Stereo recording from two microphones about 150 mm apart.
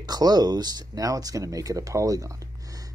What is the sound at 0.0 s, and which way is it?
Speech, 25° right (ahead or behind).